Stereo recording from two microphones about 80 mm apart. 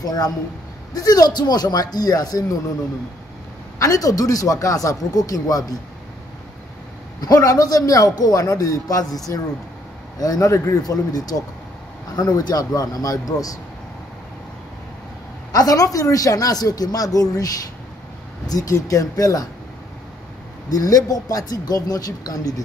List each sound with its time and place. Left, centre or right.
0.0 s a man's voice: left
3.8 s a man's voice: left
7.2 s a man's voice: left
15.5 s a man's voice: left
18.7 s a man's voice: left
20.7 s a man's voice: left